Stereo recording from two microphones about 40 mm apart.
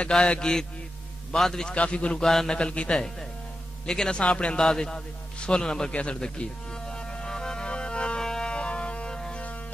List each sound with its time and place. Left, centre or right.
0.1 s a man's voice: centre
1.8 s a man's voice: left
4.3 s a man's voice: left
4.6 s a man's voice: centre
6.1 s music: left